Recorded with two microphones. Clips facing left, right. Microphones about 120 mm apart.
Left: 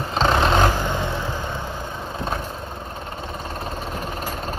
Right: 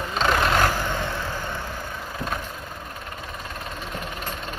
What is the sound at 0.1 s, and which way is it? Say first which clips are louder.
Vehicle: left 3 dB; 30° left (ahead or behind).